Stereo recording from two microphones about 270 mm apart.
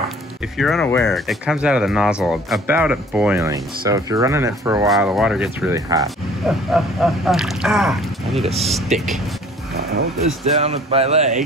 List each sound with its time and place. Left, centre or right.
0.6 s speech: centre
4.8 s speech: centre
6.7 s speech: centre
10.6 s speech: right